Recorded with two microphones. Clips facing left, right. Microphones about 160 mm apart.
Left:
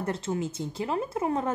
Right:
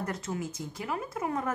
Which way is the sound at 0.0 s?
30° left (ahead or behind).